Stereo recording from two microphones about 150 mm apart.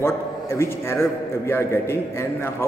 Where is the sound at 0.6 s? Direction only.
15° left (ahead or behind).